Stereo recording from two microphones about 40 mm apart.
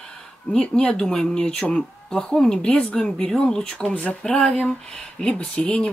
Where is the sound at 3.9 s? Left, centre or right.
Left.